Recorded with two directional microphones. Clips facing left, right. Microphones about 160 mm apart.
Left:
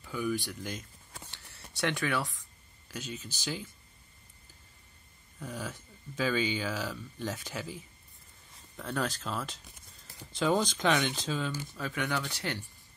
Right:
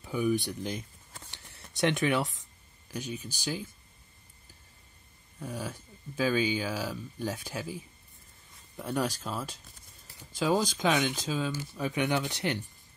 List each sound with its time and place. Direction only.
0.0 s speech: 20° right (ahead or behind)
1.3 s a sound: 20° right (ahead or behind)
2.9 s speech: 15° right (ahead or behind)
5.4 s speech: 10° right (ahead or behind)